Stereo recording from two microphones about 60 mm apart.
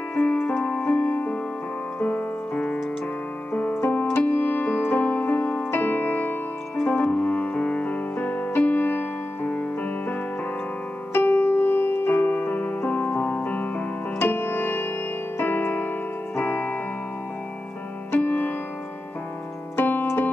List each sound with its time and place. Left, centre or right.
0.1 s music: left
3.7 s music: left
4.3 s keyboard: left
5.7 s music: left
11.1 s music: left
15.3 s keyboard: left
18.1 s music: left
19.8 s keyboard: left